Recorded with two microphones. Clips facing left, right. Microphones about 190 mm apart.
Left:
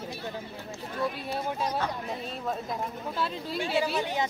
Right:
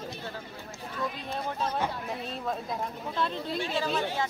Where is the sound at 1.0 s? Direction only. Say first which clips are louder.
Left 2 dB; 10° left (ahead or behind).